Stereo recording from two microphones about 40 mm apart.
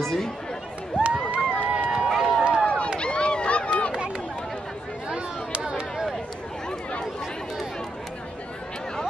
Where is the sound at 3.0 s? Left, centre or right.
Left.